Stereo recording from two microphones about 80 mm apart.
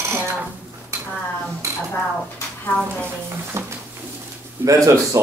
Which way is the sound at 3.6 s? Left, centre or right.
Right.